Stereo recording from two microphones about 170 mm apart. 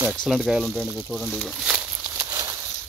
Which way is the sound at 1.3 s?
Centre (ahead or behind).